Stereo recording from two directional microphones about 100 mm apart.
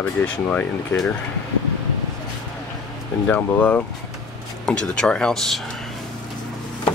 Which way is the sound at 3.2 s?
15° left (ahead or behind).